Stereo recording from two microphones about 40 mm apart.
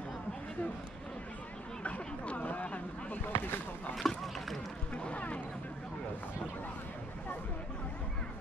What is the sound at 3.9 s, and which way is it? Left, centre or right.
Rowboat, centre.